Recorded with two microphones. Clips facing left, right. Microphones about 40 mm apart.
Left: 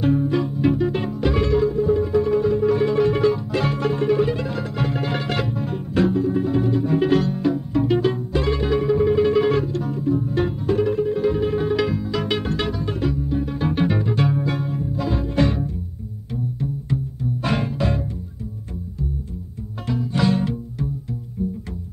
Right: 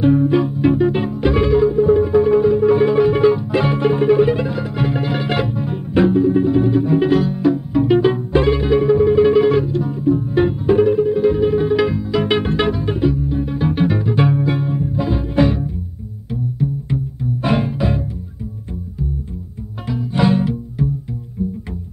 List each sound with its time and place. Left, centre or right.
0.0 s music: centre
8.5 s music: centre
12.3 s music: right; by 14.1 s centre
14.1 s music: centre
16.9 s music: centre
20.2 s music: centre